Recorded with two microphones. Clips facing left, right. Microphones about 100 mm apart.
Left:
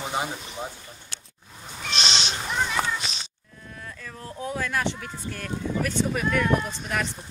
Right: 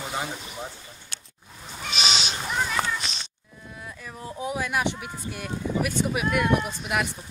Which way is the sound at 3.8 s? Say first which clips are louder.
Right 2 dB; 15° right (ahead or behind).